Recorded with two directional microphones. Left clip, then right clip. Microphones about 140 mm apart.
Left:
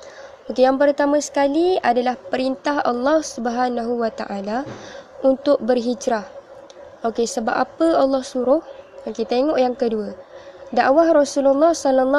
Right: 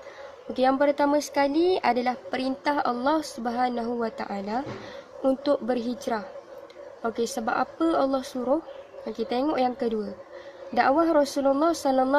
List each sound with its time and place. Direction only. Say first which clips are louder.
0.5 s a woman's voice: left 7 dB; 15° left (ahead or behind)